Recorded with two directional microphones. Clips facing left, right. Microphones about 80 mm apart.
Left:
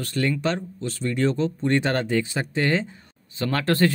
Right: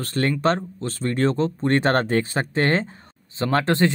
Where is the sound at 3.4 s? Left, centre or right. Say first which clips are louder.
Right 2 dB; right.